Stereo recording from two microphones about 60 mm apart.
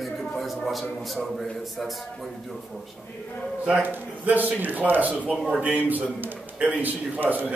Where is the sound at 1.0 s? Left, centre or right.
Centre.